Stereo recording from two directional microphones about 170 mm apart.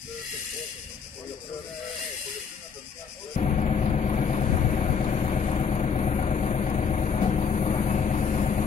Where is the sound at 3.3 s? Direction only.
40° left (ahead or behind).